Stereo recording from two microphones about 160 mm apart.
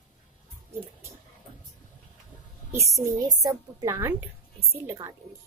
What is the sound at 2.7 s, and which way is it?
A woman's voice, 20° right (ahead or behind).